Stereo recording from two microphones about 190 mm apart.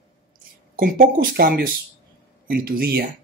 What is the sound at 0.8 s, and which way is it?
Speech, 50° right (ahead or behind).